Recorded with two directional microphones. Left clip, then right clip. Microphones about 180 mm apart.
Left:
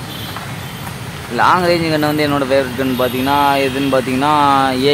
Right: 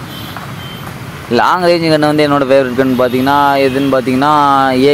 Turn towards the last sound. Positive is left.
turn(degrees=-30)  # may be behind; listen again after turning